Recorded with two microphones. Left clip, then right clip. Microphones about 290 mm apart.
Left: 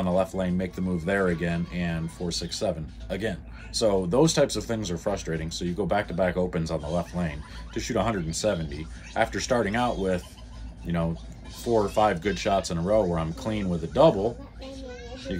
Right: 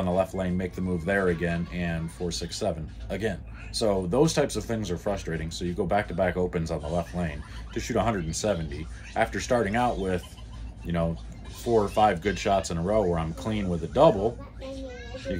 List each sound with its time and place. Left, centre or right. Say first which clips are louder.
0.0 s speech: left 1 dB; centre
15.3 s speech: right 2 dB; centre